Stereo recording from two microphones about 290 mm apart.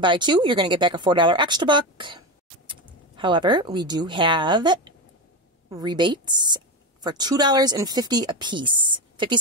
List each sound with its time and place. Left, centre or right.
0.0 s a woman's voice: centre